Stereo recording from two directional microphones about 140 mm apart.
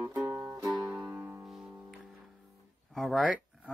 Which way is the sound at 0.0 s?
25° right (ahead or behind).